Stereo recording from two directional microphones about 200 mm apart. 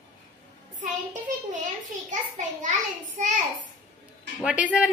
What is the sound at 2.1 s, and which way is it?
Speech, 40° right (ahead or behind).